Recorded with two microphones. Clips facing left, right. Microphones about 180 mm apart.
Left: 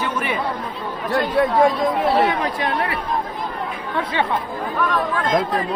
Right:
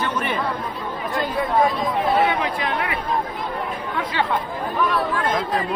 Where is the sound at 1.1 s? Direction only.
75° left (ahead or behind).